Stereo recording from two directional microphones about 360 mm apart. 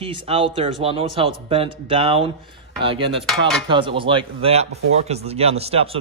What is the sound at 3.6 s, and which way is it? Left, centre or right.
A man's voice, centre.